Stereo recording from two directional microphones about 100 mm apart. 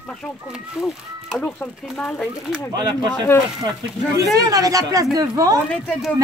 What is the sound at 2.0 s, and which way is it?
Speech, 15° left (ahead or behind).